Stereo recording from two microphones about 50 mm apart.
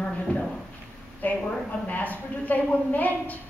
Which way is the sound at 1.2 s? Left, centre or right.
Left.